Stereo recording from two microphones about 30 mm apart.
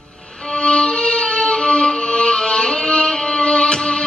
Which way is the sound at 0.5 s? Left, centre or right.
Left.